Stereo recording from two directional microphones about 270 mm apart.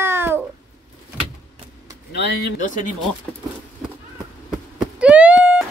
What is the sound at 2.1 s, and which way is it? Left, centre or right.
Speech, left.